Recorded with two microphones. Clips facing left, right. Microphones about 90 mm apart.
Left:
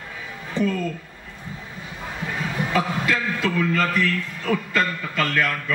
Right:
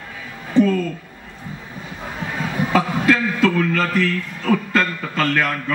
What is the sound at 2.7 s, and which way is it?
A man's voice, 40° right (ahead or behind).